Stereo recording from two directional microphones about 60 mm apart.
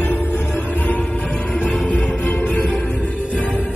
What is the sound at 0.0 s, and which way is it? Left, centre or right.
Music, left.